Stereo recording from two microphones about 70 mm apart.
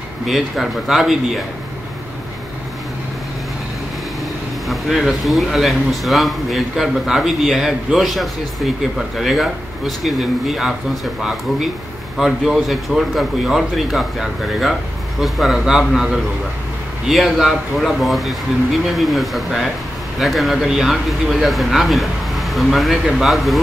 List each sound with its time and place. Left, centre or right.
0.3 s speech: centre
4.6 s speech: centre
12.2 s speech: centre
17.1 s speech: centre